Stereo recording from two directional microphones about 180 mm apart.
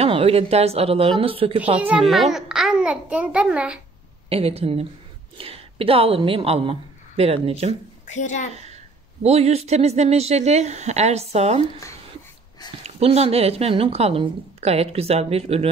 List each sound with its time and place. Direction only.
0.0 s a woman's voice: 30° right (ahead or behind)
1.8 s a child's voice: 5° right (ahead or behind)
4.3 s a woman's voice: 35° right (ahead or behind)
8.1 s a child's voice: 40° left (ahead or behind)
9.2 s a woman's voice: 35° right (ahead or behind)
12.8 s a woman's voice: 35° right (ahead or behind)